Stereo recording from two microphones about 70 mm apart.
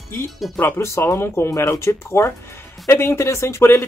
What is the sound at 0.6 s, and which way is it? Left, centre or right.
Speech, left.